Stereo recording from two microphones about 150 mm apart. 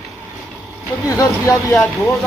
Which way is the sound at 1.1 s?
20° left (ahead or behind).